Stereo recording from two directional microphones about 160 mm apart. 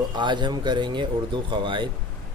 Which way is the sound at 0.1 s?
30° right (ahead or behind).